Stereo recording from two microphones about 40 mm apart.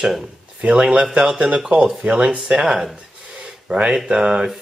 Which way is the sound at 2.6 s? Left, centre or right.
Centre.